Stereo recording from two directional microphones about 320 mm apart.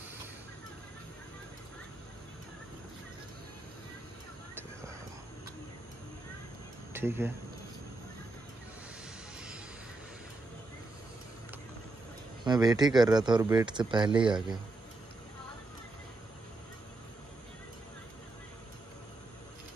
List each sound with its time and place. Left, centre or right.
6.9 s speech: centre
12.4 s speech: centre